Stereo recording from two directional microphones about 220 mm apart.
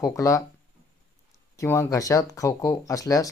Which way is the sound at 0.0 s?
15° left (ahead or behind).